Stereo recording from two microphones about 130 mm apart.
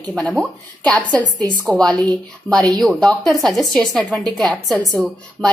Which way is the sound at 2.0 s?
30° right (ahead or behind).